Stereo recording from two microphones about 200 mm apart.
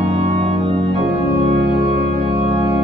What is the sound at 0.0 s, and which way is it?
Organ, 30° right (ahead or behind).